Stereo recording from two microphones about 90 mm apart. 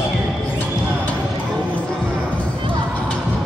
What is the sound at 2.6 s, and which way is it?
Music, 65° right (ahead or behind).